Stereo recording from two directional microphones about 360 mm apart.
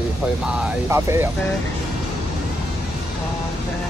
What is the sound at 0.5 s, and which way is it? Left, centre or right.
Speech, centre.